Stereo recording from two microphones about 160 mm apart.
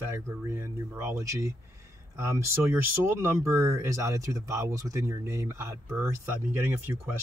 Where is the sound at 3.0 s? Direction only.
15° right (ahead or behind).